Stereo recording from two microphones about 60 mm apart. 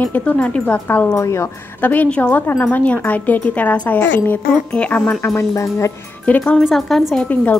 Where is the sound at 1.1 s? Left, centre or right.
Left.